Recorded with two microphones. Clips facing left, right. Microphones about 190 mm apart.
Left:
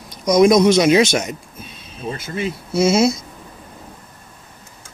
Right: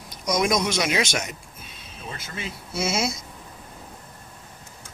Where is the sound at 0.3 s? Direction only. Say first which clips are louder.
Left 11 dB; 35° left (ahead or behind).